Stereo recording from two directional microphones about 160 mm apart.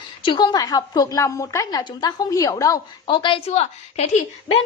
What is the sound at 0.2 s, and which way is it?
A woman's voice, 30° left (ahead or behind).